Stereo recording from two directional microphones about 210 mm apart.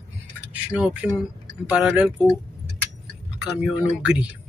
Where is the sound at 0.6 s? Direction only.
5° right (ahead or behind).